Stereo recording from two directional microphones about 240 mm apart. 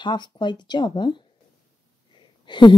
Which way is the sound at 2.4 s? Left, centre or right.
Centre.